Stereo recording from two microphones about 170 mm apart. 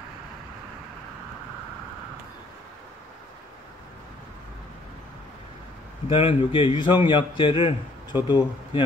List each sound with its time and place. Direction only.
6.0 s a man's voice: 30° left (ahead or behind)